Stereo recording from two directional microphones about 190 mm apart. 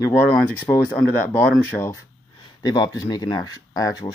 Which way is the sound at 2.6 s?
20° left (ahead or behind).